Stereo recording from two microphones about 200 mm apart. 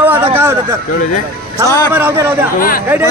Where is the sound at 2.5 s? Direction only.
45° left (ahead or behind).